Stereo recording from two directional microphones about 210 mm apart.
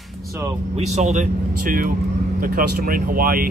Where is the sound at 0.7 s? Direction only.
35° right (ahead or behind).